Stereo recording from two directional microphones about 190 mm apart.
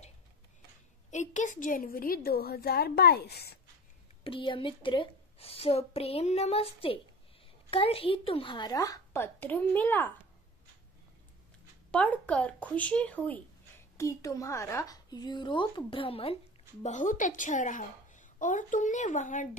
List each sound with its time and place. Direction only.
1.1 s a woman's voice: 40° left (ahead or behind); by 3.5 s 55° left (ahead or behind)
4.2 s a woman's voice: 25° left (ahead or behind); by 10.0 s 10° left (ahead or behind)
11.9 s speech: 5° left (ahead or behind); by 16.3 s 30° left (ahead or behind)
16.8 s a woman's voice: 40° left (ahead or behind)